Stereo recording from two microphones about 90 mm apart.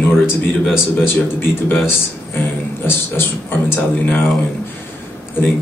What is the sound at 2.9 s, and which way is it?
Speech, 25° left (ahead or behind).